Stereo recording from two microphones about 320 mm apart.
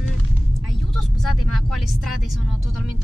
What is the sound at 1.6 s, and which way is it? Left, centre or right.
Speech, centre.